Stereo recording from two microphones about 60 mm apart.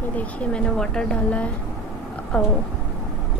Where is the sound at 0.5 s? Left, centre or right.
Centre.